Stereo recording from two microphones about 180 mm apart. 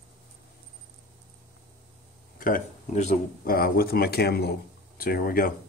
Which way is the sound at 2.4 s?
45° left (ahead or behind).